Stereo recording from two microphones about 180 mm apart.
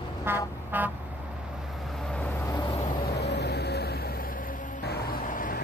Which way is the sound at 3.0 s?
65° left (ahead or behind).